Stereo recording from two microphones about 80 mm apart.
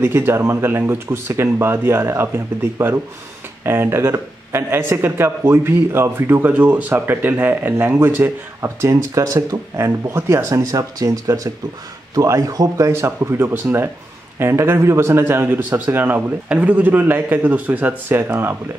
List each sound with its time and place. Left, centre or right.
0.0 s speech: right